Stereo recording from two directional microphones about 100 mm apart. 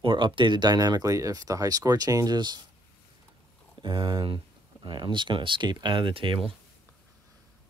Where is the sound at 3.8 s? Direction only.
55° right (ahead or behind).